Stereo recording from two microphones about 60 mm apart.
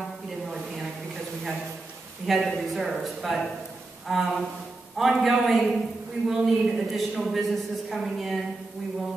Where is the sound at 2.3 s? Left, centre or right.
Centre.